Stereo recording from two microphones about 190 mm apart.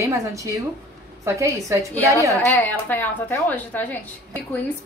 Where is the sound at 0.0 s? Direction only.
15° right (ahead or behind).